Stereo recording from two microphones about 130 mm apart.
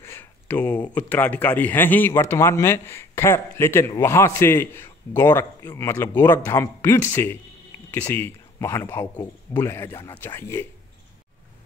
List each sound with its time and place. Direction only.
0.0 s a man's voice: 20° left (ahead or behind)